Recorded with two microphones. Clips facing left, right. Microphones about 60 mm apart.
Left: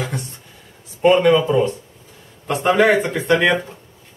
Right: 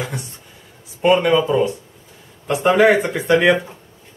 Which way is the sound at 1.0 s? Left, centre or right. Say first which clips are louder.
Left 1 dB; centre.